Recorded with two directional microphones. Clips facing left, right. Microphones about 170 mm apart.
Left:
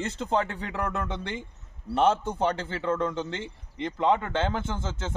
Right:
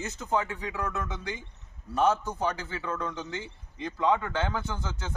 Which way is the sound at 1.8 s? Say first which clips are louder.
Left 2 dB; 25° left (ahead or behind).